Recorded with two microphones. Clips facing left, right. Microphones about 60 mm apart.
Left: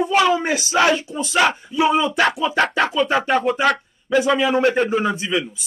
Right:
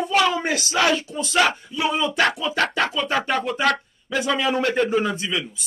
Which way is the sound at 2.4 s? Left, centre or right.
Left.